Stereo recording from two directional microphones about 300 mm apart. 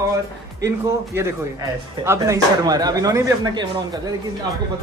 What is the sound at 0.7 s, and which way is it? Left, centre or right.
Speech, centre.